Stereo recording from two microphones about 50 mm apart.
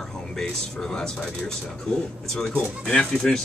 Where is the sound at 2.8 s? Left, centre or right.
Centre.